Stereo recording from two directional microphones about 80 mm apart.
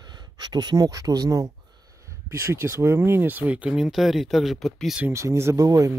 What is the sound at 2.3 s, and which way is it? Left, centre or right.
Speech, right.